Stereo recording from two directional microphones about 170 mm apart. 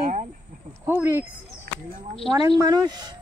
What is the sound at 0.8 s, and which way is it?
Speech, 15° right (ahead or behind).